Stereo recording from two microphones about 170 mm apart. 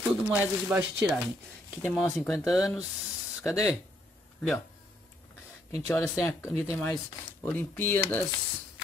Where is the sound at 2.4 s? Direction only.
Centre (ahead or behind).